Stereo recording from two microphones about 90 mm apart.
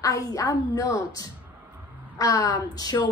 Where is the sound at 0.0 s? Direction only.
40° left (ahead or behind).